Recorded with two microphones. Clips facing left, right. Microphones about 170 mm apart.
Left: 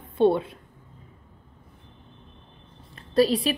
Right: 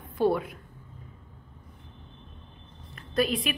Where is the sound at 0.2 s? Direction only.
25° left (ahead or behind).